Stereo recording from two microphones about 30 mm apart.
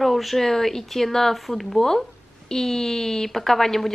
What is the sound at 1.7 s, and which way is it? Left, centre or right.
A woman's voice, centre.